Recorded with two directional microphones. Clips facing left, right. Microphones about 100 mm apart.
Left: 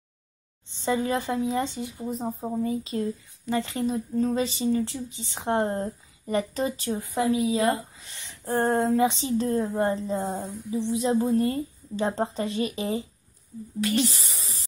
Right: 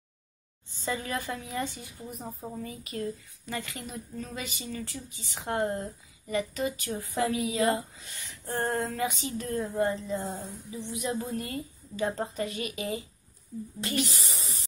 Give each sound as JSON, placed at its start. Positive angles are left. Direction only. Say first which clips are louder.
{"t": 0.7, "sound": "speech", "louder": "left 8 dB", "side_deg": 25}
{"t": 6.9, "sound": "a woman's voice", "louder": "left 6 dB", "side_deg": 20}